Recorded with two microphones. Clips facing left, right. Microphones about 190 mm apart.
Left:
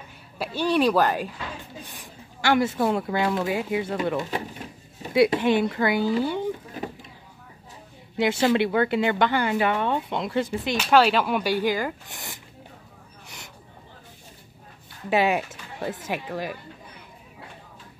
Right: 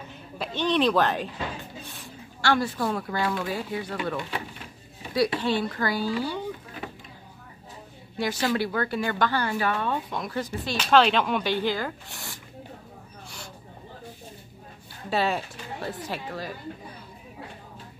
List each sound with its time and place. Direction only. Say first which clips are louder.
0.4 s speech: left 2 dB; 10° left (ahead or behind)
8.2 s speech: left 5 dB; 25° left (ahead or behind)
10.8 s speech: left 1 dB; 10° left (ahead or behind)
15.0 s speech: left 4 dB; 15° left (ahead or behind)